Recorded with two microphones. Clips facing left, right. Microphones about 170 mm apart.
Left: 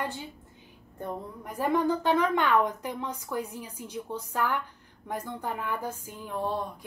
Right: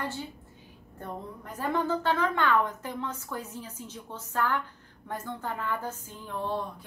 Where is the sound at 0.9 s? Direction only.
15° left (ahead or behind).